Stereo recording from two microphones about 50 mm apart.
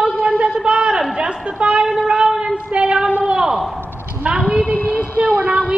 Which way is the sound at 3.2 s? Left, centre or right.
Centre.